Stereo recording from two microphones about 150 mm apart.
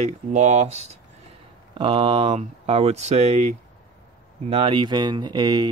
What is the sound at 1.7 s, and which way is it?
Speech, 35° right (ahead or behind).